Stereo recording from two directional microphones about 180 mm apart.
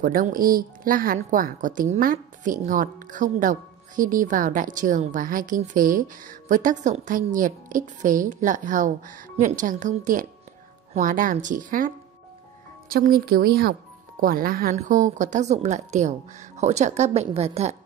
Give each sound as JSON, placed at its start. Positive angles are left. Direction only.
{"t": 0.0, "sound": "speech", "side_deg": -50}
{"t": 12.9, "sound": "a woman's voice", "side_deg": -55}